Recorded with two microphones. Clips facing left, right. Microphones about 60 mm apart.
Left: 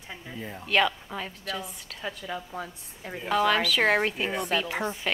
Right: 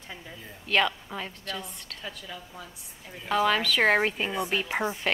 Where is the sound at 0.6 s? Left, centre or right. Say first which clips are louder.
Left 1 dB; centre.